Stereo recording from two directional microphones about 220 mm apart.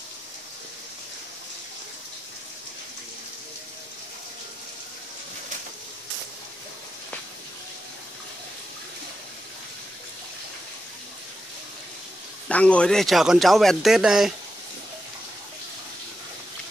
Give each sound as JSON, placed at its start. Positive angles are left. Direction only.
{"t": 12.4, "sound": "speech", "side_deg": 5}